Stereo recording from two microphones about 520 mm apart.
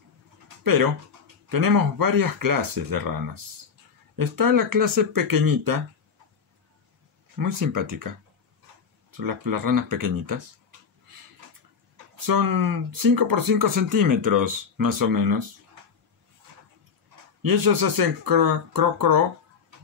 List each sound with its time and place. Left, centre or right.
1.5 s speech: right
7.3 s speech: right
9.1 s speech: right
12.3 s speech: right
17.4 s speech: right